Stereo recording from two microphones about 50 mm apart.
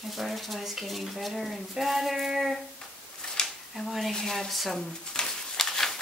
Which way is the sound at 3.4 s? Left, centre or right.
Centre.